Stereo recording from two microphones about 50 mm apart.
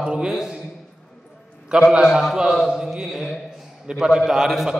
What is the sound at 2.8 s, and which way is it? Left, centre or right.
A man's voice, centre.